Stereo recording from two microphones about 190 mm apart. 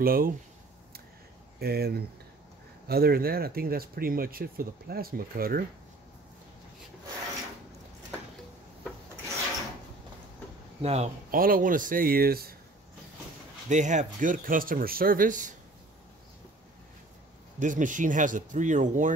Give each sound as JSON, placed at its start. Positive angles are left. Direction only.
{"t": 0.0, "sound": "speech", "side_deg": -50}
{"t": 1.6, "sound": "speech", "side_deg": -55}
{"t": 10.8, "sound": "speech", "side_deg": -35}
{"t": 11.3, "sound": "speech", "side_deg": -50}
{"t": 13.7, "sound": "speech", "side_deg": -40}
{"t": 17.6, "sound": "speech", "side_deg": -40}